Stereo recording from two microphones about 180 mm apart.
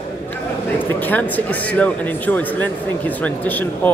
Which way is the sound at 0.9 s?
10° left (ahead or behind).